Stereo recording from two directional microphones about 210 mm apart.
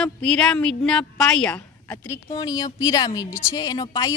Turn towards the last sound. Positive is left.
turn(degrees=15)  # may be behind; listen again after turning